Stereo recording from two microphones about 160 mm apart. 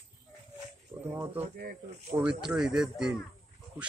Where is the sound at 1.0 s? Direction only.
15° right (ahead or behind).